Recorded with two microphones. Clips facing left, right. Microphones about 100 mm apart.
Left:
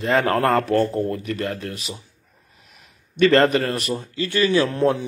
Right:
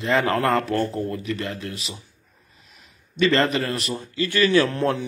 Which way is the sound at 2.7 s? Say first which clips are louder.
Even; 50° left (ahead or behind).